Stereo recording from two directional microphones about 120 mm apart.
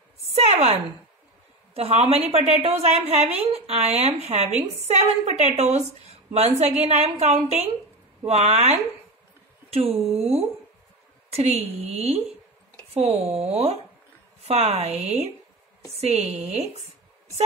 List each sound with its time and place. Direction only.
0.5 s a sound: 60° right (ahead or behind)
1.7 s a woman's voice: 60° right (ahead or behind)
9.9 s speech: centre (ahead or behind)
11.3 s a woman's voice: 65° right (ahead or behind)
13.3 s a woman's voice: 60° right (ahead or behind)